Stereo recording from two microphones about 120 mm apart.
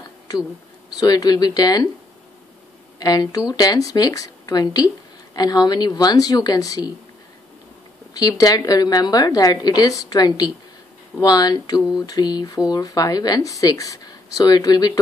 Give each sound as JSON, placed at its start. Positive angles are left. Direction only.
{"t": 0.8, "sound": "speech", "side_deg": 35}
{"t": 3.0, "sound": "speech", "side_deg": 30}
{"t": 8.1, "sound": "speech", "side_deg": 30}